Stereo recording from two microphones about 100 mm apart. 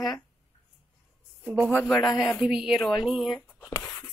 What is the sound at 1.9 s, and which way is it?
Speech, centre (ahead or behind).